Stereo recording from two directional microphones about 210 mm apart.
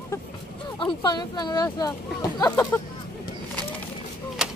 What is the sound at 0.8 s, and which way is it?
Speech, 20° left (ahead or behind).